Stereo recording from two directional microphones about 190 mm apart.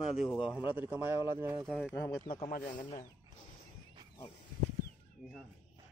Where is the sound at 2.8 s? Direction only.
45° left (ahead or behind).